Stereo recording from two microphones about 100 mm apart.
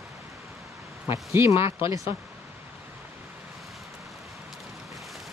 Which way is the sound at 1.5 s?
60° left (ahead or behind).